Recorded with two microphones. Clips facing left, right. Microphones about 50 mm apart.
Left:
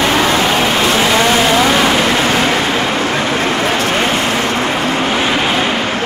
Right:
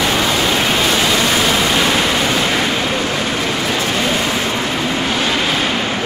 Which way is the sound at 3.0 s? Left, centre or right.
Left.